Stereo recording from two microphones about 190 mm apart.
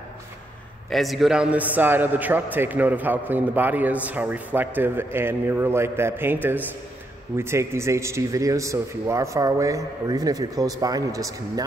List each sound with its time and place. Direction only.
0.8 s a man's voice: centre (ahead or behind); by 11.6 s 15° right (ahead or behind)